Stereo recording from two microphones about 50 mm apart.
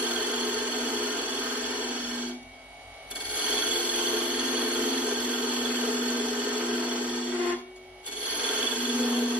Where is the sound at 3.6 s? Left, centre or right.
Right.